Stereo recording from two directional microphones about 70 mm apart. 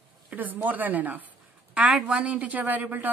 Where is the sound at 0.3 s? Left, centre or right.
Right.